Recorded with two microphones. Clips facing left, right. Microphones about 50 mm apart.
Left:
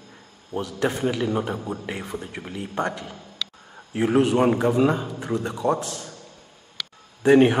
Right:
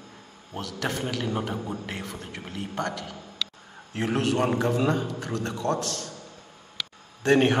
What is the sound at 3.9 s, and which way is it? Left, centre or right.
A man's voice, centre.